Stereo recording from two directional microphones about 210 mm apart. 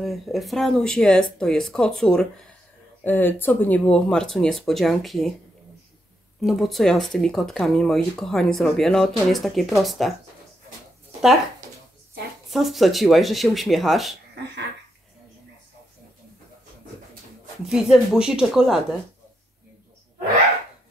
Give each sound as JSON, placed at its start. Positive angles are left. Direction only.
{"t": 0.0, "sound": "speech", "side_deg": 0}
{"t": 6.4, "sound": "speech", "side_deg": 0}
{"t": 12.4, "sound": "speech", "side_deg": 0}
{"t": 14.4, "sound": "a sound", "side_deg": -50}
{"t": 17.6, "sound": "speech", "side_deg": -5}